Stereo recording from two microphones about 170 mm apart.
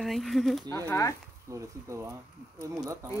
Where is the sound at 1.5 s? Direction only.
20° right (ahead or behind).